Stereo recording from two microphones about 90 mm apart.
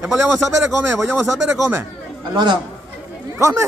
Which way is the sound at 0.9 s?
30° right (ahead or behind).